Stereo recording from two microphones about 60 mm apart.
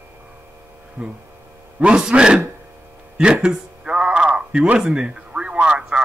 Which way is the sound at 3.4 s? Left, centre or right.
Centre.